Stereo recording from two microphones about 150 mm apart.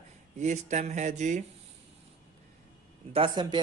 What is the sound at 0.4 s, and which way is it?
Speech, 55° right (ahead or behind).